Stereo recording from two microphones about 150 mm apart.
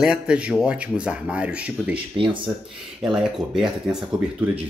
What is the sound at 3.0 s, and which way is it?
Speech, 5° right (ahead or behind).